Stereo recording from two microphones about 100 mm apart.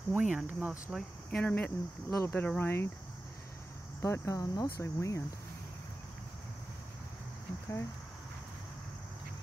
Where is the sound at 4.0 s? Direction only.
30° left (ahead or behind).